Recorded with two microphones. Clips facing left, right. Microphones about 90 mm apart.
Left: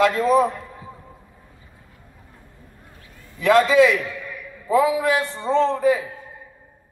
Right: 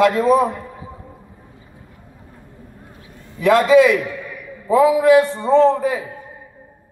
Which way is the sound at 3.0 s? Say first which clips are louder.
Right 5 dB; 20° right (ahead or behind).